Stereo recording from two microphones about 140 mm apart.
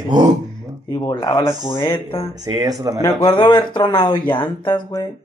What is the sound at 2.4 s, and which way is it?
Speech, 25° right (ahead or behind).